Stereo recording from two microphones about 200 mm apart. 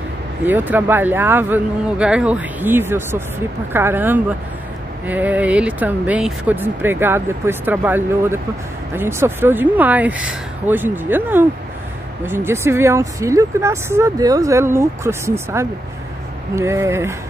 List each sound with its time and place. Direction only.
0.5 s speech: 10° right (ahead or behind)